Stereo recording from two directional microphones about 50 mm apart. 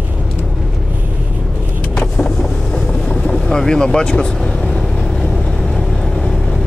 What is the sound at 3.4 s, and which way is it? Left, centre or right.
Speech, centre.